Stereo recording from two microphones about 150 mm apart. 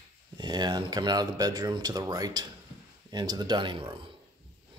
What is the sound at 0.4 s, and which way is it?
Speech, 30° right (ahead or behind).